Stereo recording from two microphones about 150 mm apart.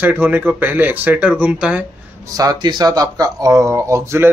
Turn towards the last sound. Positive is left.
turn(degrees=-20)  # may be behind; listen again after turning